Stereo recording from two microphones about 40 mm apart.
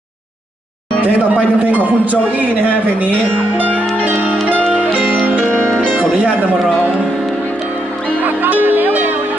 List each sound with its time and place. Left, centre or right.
1.0 s a man's voice: right
3.5 s music: right
8.2 s music: right